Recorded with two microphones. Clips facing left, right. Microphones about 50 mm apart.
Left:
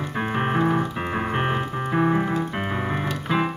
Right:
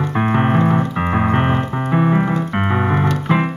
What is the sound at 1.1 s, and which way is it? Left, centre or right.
Keyboard, right.